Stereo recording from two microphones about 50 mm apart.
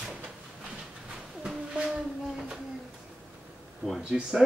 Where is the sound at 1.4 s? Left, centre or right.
Centre.